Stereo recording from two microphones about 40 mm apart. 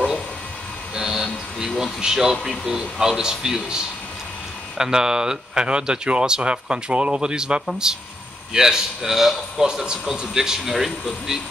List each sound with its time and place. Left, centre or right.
0.9 s a man's voice: centre
4.7 s a man's voice: centre